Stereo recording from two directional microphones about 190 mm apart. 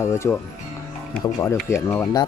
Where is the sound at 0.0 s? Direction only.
15° left (ahead or behind).